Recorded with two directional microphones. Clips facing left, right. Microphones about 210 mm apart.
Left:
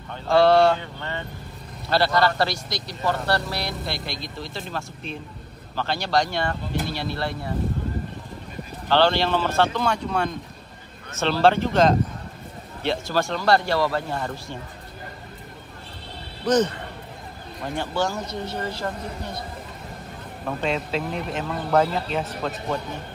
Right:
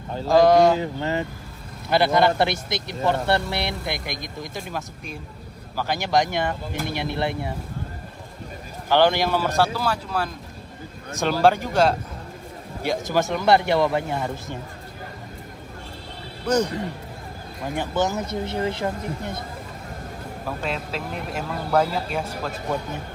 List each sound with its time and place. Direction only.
0.3 s speech: 15° right (ahead or behind)
1.9 s speech: 20° right (ahead or behind)
8.8 s speech: 15° right (ahead or behind)
16.4 s speech: 10° right (ahead or behind)
17.7 s speech: 20° right (ahead or behind)
20.4 s speech: centre (ahead or behind)